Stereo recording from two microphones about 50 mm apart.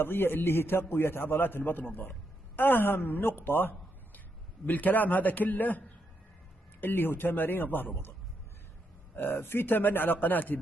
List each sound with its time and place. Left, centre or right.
0.0 s a man's voice: left
9.1 s speech: left